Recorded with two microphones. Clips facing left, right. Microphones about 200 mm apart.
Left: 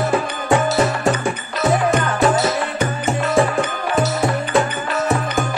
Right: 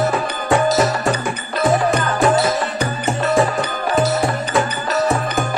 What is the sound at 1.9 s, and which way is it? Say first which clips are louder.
Music: right 1 dB; 40° right (ahead or behind).